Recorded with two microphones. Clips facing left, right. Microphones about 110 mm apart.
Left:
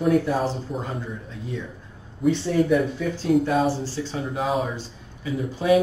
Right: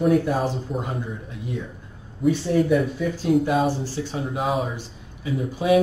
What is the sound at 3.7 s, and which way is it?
Speech, 15° right (ahead or behind).